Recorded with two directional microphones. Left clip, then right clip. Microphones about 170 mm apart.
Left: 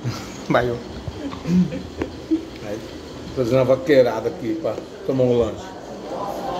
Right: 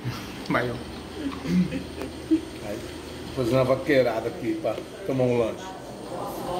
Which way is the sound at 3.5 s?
35° left (ahead or behind).